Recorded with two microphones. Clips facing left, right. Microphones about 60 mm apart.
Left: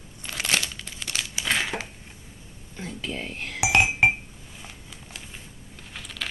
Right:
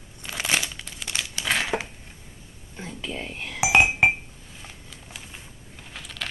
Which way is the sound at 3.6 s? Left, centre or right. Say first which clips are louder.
Right 2 dB; centre.